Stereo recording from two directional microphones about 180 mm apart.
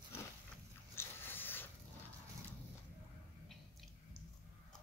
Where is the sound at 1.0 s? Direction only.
10° left (ahead or behind).